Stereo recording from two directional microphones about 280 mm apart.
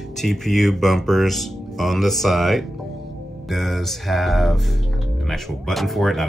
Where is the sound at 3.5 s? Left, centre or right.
Centre.